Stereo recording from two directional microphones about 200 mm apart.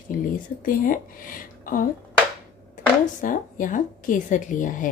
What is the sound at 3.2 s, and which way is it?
Speech, 40° left (ahead or behind).